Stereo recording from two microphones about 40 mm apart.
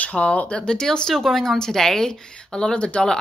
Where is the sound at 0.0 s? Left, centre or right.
Left.